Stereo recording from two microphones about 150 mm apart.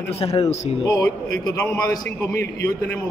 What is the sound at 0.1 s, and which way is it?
Speech, 40° left (ahead or behind).